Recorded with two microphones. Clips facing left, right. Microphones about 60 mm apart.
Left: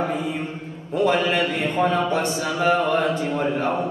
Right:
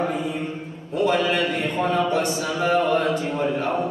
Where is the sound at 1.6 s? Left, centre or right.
Left.